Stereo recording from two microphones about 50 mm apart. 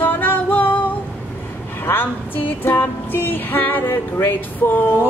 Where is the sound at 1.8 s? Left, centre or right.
Left.